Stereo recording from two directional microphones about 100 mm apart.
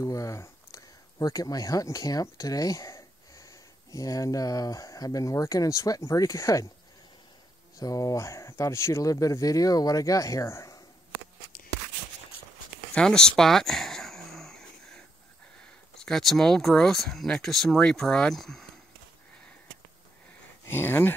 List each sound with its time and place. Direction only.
0.0 s speech: 35° left (ahead or behind)
7.8 s speech: 35° left (ahead or behind)
12.9 s a sound: 5° left (ahead or behind)
16.0 s speech: 5° left (ahead or behind)
20.7 s speech: 20° left (ahead or behind)